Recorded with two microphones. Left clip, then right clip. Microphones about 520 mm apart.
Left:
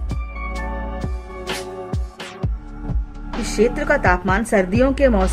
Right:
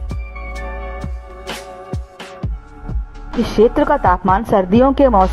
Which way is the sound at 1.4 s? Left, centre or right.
Centre.